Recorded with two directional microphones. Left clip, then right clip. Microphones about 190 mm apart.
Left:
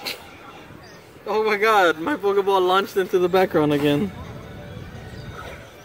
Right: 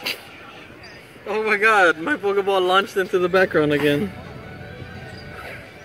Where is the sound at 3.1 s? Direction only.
25° left (ahead or behind).